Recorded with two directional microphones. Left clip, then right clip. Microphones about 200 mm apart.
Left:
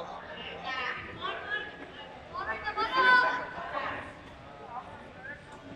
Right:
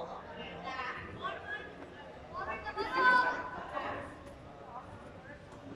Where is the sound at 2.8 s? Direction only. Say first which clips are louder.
Left 4 dB; 20° right (ahead or behind).